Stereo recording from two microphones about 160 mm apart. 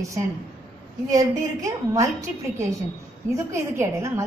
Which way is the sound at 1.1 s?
20° right (ahead or behind).